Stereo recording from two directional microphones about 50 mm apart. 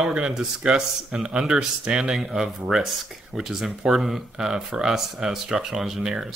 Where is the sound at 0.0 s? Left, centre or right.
Centre.